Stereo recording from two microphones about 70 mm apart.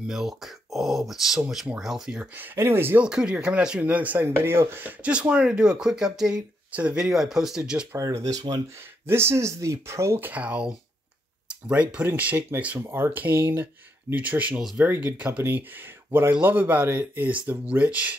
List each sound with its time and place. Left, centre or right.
0.0 s speech: centre
2.3 s speech: right
3.0 s speech: centre
3.8 s speech: right
7.1 s speech: centre
8.0 s speech: right
9.0 s speech: right
10.2 s speech: centre
12.8 s speech: right
13.1 s speech: right
16.1 s speech: right